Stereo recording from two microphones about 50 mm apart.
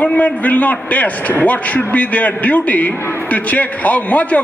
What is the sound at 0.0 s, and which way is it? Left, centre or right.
A man's voice, left.